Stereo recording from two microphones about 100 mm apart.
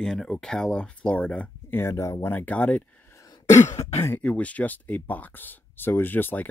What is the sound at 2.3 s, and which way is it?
Speech, 15° left (ahead or behind).